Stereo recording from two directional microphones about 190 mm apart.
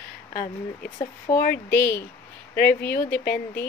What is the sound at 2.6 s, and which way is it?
Speech, 55° left (ahead or behind).